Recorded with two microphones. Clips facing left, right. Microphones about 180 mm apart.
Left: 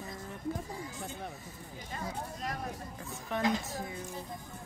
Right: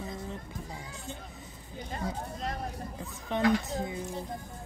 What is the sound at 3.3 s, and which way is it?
Speech, 25° right (ahead or behind).